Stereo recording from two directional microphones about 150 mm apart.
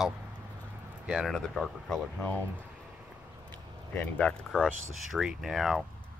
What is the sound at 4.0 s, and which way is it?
Speech, 10° left (ahead or behind).